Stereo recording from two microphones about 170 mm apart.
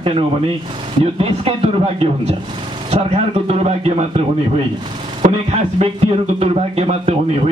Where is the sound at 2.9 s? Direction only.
40° right (ahead or behind).